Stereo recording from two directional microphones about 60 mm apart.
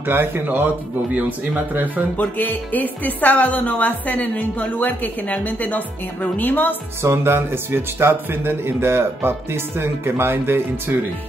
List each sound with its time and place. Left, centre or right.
0.0 s speech: right
2.1 s a woman's voice: left
7.0 s speech: right